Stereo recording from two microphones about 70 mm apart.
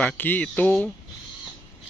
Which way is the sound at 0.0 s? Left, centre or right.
Left.